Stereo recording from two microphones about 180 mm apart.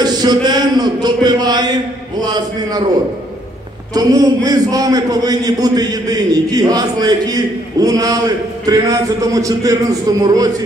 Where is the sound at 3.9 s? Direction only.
20° right (ahead or behind).